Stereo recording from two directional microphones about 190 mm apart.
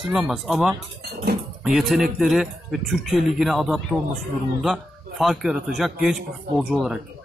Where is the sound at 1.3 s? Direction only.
55° right (ahead or behind).